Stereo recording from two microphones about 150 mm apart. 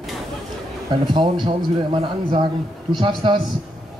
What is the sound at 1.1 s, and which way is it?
Speech, 35° right (ahead or behind).